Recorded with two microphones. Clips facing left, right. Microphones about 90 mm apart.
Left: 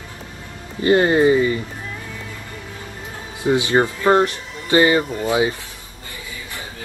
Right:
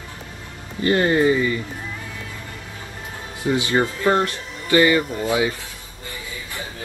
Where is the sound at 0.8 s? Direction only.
25° left (ahead or behind).